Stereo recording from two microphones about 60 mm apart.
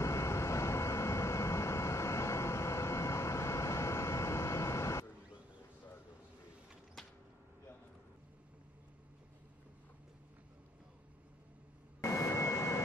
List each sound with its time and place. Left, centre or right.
0.0 s vehicle: left
7.0 s a sound: centre
12.0 s vehicle: left